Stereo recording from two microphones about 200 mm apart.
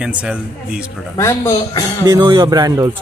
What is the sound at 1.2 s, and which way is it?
Speech, 15° left (ahead or behind).